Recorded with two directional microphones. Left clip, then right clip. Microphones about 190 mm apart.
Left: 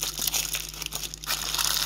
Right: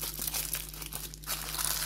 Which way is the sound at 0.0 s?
15° left (ahead or behind).